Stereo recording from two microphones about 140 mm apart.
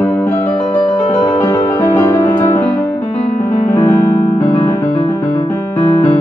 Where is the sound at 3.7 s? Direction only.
45° left (ahead or behind).